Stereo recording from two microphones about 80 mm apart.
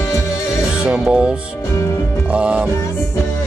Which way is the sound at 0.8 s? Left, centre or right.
Centre.